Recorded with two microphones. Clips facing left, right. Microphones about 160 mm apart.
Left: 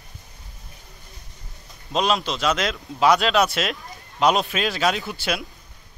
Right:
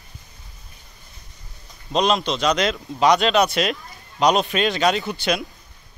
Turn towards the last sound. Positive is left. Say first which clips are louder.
# right 4 dB
turn(degrees=5)  # may be behind; listen again after turning